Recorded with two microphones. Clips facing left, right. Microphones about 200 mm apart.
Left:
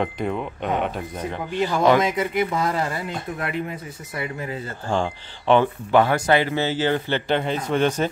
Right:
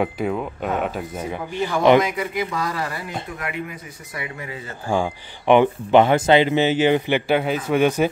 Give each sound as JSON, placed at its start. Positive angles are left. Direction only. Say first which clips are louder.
{"t": 0.0, "sound": "speech", "louder": "right 2 dB", "side_deg": -5}
{"t": 1.8, "sound": "a man's voice", "louder": "right 3 dB", "side_deg": -20}
{"t": 2.0, "sound": "speech", "louder": "left 3 dB", "side_deg": 25}
{"t": 4.8, "sound": "speech", "louder": "right 2 dB", "side_deg": -15}